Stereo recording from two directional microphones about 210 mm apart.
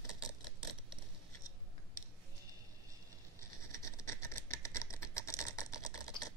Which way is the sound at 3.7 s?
15° left (ahead or behind).